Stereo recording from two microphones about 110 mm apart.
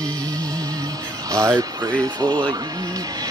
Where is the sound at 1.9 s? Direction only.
40° right (ahead or behind).